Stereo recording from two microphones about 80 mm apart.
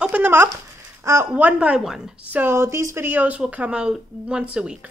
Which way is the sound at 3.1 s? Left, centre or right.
Right.